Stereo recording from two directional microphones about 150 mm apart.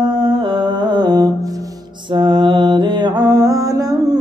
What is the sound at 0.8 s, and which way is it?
Mantra, 30° right (ahead or behind).